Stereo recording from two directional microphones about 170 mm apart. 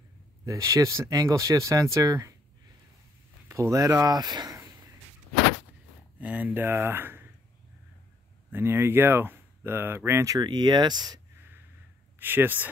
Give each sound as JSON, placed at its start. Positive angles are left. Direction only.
{"t": 0.5, "sound": "speech", "side_deg": -20}
{"t": 3.4, "sound": "speech", "side_deg": -15}
{"t": 6.1, "sound": "speech", "side_deg": -10}
{"t": 8.5, "sound": "speech", "side_deg": -15}
{"t": 11.3, "sound": "a sound", "side_deg": -10}
{"t": 12.2, "sound": "speech", "side_deg": -10}